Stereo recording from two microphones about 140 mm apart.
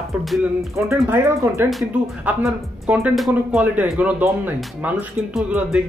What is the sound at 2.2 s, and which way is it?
Speech, 5° right (ahead or behind).